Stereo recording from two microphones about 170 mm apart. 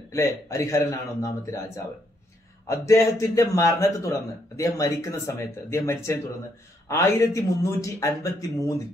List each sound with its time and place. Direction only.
0.1 s a man's voice: 15° left (ahead or behind)